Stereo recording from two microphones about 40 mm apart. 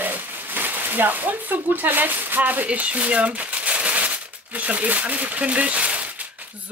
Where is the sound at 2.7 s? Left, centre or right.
Right.